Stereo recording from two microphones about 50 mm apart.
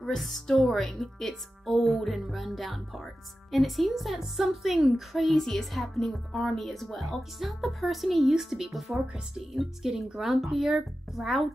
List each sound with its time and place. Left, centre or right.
0.1 s a woman's voice: centre